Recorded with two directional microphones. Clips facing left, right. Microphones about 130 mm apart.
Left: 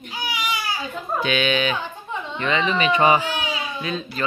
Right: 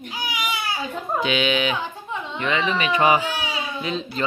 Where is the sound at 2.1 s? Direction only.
5° right (ahead or behind).